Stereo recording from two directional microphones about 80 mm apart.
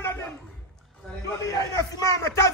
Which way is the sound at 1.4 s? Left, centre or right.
Left.